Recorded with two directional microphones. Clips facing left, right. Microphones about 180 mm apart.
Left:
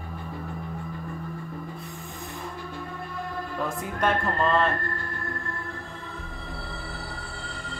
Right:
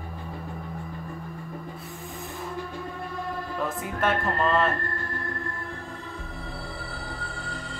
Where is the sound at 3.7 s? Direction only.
Centre (ahead or behind).